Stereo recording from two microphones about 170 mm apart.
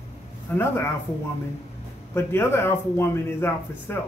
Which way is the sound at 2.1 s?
15° left (ahead or behind).